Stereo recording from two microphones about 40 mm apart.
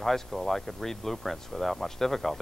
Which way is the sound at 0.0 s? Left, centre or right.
Centre.